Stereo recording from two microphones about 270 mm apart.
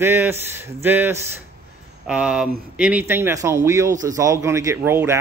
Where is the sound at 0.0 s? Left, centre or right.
Centre.